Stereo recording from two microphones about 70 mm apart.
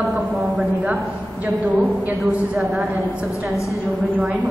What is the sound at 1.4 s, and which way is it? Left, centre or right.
Speech, right.